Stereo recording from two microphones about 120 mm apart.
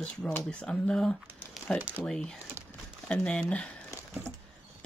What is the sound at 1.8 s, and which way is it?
Speech, 15° right (ahead or behind).